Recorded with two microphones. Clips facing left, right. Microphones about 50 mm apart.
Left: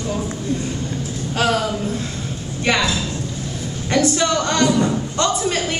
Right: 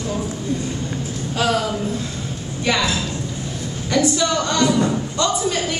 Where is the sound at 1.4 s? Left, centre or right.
Left.